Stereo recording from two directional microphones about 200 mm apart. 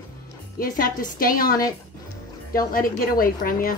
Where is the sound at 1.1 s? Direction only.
45° left (ahead or behind).